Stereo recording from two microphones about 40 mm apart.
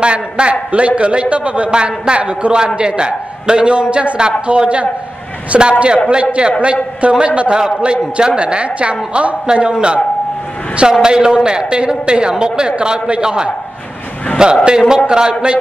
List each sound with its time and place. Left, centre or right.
0.0 s a man's voice: right